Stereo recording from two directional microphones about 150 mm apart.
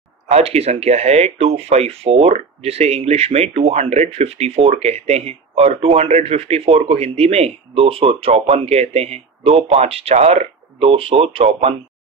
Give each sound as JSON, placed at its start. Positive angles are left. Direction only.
{"t": 0.3, "sound": "speech", "side_deg": -45}